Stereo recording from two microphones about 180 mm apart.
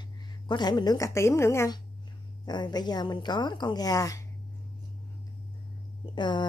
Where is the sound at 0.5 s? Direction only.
25° left (ahead or behind).